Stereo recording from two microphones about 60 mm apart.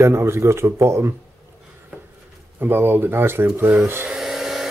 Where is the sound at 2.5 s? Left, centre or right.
Right.